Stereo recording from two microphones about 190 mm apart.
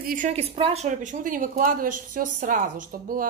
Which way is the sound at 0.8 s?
40° right (ahead or behind).